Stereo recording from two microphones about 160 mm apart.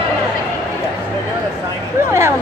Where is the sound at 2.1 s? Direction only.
15° right (ahead or behind).